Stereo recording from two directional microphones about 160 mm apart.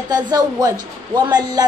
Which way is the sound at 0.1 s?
25° right (ahead or behind).